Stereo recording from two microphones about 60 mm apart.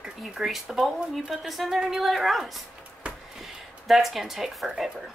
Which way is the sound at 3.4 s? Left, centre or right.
Centre.